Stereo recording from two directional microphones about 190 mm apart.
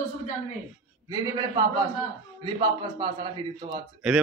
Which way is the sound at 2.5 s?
25° right (ahead or behind).